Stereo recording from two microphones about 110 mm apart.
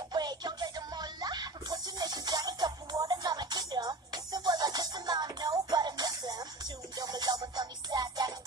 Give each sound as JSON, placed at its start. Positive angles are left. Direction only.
{"t": 0.1, "sound": "music", "side_deg": -40}